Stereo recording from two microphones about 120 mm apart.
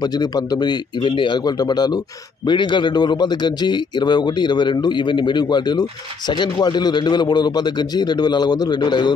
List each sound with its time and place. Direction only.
0.0 s a man's voice: 35° left (ahead or behind)